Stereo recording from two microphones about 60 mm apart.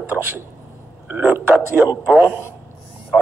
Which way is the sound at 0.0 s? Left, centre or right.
Right.